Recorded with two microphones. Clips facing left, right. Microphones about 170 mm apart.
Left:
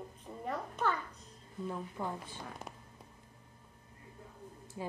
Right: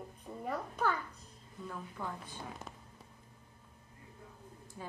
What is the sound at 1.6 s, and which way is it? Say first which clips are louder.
Speech: left 4 dB; 20° left (ahead or behind).